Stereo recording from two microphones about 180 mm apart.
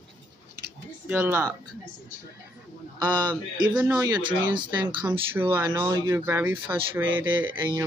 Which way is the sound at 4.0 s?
25° right (ahead or behind).